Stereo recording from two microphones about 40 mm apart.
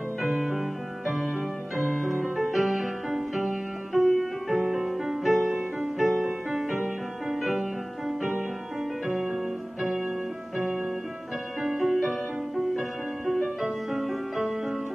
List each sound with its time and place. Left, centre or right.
0.2 s music: centre
5.5 s music: centre
5.9 s music: centre
11.6 s music: centre